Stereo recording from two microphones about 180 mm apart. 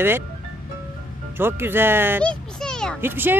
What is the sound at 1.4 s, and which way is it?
Speech, 10° right (ahead or behind).